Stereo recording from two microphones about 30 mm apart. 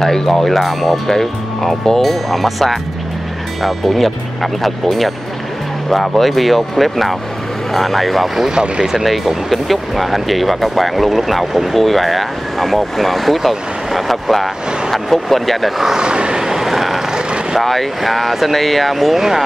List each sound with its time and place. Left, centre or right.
0.0 s speech: centre
8.4 s speech: right
9.0 s speech: centre
16.0 s vehicle: right
16.3 s vehicle: centre
17.6 s speech: centre
19.1 s speech: centre